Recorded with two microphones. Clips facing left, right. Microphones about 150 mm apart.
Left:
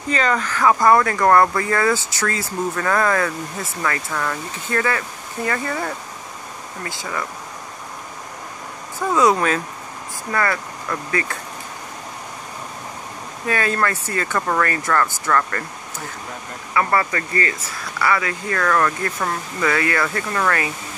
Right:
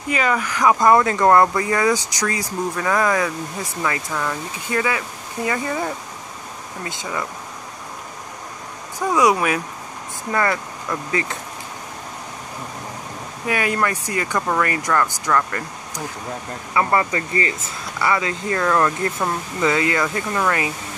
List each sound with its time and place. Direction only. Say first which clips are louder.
0.1 s speech: even; 10° right (ahead or behind)
9.0 s speech: even; 10° right (ahead or behind)
13.5 s speech: even; 15° right (ahead or behind)